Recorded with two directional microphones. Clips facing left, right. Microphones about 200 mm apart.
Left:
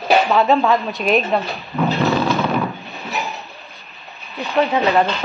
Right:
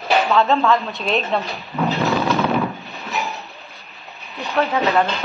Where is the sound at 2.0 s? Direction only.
Centre (ahead or behind).